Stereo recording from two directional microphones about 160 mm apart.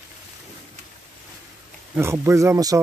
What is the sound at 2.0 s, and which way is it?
Speech, 15° right (ahead or behind).